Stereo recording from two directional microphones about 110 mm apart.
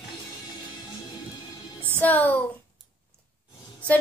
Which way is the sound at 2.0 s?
15° left (ahead or behind).